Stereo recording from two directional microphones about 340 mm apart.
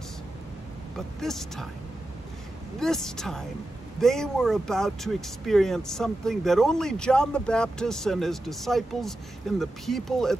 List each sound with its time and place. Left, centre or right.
0.9 s speech: centre
2.8 s speech: centre